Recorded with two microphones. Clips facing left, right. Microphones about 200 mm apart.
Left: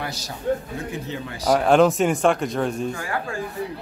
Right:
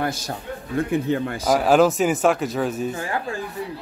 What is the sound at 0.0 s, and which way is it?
A man's voice, 50° right (ahead or behind).